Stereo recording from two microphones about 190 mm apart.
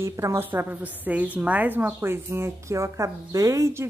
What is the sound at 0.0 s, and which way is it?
A woman's voice, 15° right (ahead or behind).